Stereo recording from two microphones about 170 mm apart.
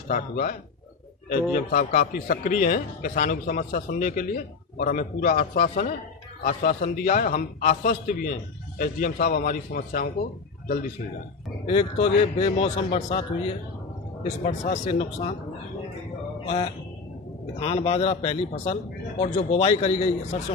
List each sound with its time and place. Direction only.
0.1 s a man's voice: 60° left (ahead or behind)
11.6 s a man's voice: 35° left (ahead or behind)
14.4 s speech: 40° left (ahead or behind)
16.4 s a sound: 35° left (ahead or behind)
17.6 s a man's voice: 35° left (ahead or behind)